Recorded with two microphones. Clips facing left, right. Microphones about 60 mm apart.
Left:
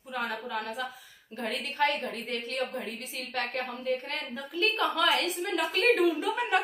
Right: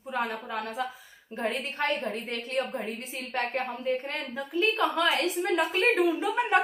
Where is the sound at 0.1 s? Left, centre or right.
Right.